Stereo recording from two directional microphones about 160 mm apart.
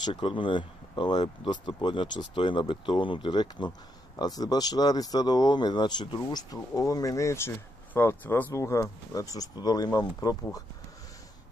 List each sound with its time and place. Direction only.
0.0 s speech: 30° left (ahead or behind)